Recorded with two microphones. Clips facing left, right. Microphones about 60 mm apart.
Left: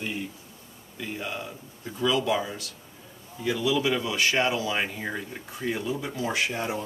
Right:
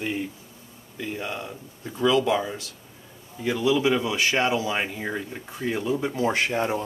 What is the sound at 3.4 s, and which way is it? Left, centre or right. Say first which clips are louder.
A man's voice: right 3 dB; centre.